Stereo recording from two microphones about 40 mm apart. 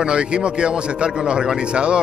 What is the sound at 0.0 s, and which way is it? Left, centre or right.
Speech, right.